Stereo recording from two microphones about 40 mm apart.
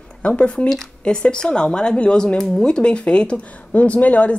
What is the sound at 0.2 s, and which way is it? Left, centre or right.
Speech, left.